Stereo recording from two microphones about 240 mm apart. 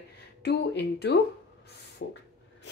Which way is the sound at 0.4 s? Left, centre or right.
Left.